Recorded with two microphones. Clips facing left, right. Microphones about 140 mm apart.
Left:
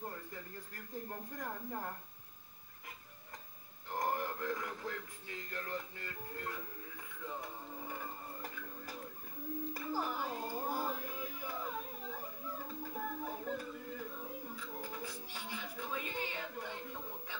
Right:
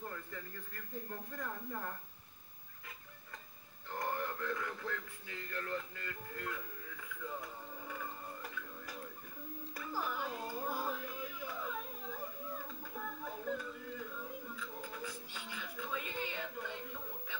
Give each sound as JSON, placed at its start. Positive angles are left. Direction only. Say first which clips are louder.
{"t": 1.4, "sound": "a woman's voice", "louder": "left 1 dB", "side_deg": 35}
{"t": 3.9, "sound": "a sound", "louder": "left 2 dB", "side_deg": 35}
{"t": 5.5, "sound": "music", "louder": "right 2 dB", "side_deg": 30}
{"t": 7.9, "sound": "tick-tock", "louder": "even", "side_deg": 35}
{"t": 9.8, "sound": "music", "louder": "right 1 dB", "side_deg": 40}
{"t": 12.9, "sound": "music", "louder": "left 2 dB", "side_deg": 45}